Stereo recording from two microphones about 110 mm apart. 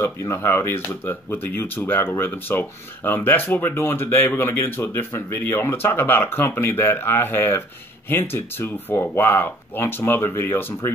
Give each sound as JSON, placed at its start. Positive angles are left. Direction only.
{"t": 0.0, "sound": "speech", "side_deg": 25}